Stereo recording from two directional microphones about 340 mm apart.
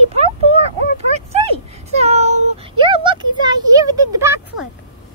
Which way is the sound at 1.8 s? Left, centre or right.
Centre.